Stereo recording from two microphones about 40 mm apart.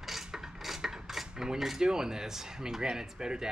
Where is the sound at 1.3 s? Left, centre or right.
Centre.